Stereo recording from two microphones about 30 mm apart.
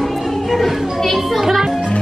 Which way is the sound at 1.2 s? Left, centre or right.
Centre.